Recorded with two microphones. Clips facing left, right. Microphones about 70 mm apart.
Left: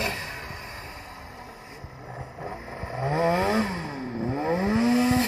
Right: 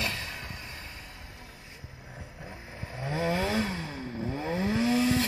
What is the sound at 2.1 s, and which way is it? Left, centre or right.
Vehicle, left.